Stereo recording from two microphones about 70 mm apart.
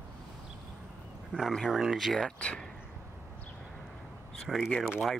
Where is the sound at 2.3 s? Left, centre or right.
Centre.